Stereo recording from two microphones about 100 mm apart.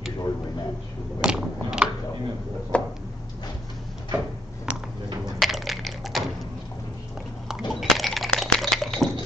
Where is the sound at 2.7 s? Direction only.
15° left (ahead or behind).